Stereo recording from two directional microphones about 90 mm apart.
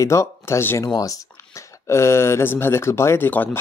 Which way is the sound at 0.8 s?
40° left (ahead or behind).